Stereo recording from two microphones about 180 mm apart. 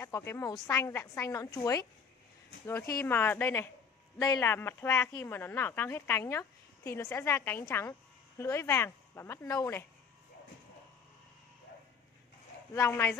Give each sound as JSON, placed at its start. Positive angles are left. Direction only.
{"t": 0.0, "sound": "a woman's voice", "side_deg": 15}
{"t": 12.7, "sound": "speech", "side_deg": 15}